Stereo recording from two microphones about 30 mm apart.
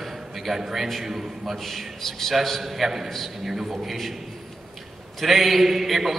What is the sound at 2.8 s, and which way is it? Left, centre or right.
A man's voice, centre.